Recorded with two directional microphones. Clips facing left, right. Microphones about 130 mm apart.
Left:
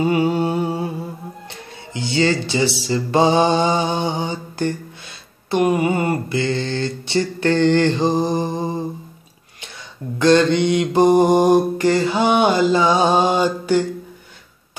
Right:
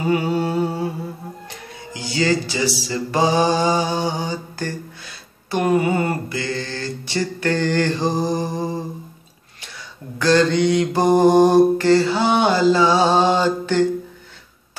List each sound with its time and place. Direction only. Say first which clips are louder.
0.1 s mantra: left 2 dB; 20° left (ahead or behind)
2.0 s mantra: left 2 dB; 25° left (ahead or behind)
10.1 s mantra: left 2 dB; 20° left (ahead or behind)